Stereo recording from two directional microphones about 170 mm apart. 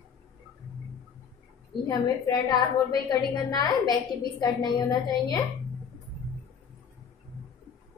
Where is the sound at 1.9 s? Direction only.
25° left (ahead or behind).